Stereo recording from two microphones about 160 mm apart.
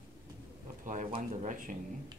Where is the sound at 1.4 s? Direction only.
60° right (ahead or behind).